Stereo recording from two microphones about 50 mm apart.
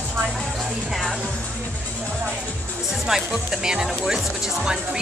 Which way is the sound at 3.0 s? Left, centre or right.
Centre.